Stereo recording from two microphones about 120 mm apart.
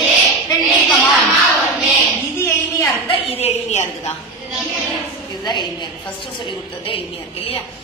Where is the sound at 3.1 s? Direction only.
50° left (ahead or behind).